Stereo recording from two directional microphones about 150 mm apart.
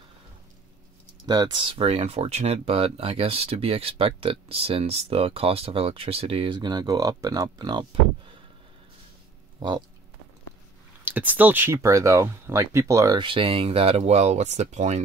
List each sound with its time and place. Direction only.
1.2 s speech: 30° right (ahead or behind)
9.6 s speech: 30° right (ahead or behind)
11.1 s speech: 10° right (ahead or behind); by 15.0 s 50° right (ahead or behind)